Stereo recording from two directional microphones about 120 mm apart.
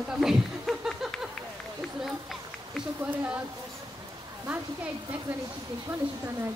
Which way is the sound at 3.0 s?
15° right (ahead or behind).